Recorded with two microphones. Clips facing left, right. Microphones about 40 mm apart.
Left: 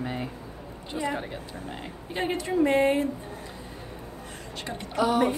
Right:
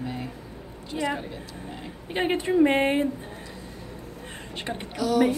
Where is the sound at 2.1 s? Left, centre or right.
Right.